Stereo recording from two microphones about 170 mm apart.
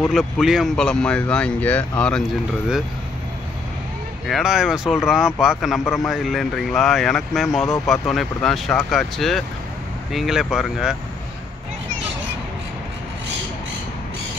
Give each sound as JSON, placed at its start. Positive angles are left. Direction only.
{"t": 0.1, "sound": "speech", "side_deg": 0}
{"t": 4.3, "sound": "speech", "side_deg": -5}